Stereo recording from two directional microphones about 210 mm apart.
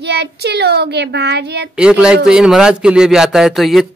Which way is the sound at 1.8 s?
5° right (ahead or behind).